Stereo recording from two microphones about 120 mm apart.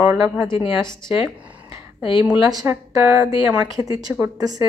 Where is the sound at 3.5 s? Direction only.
30° right (ahead or behind).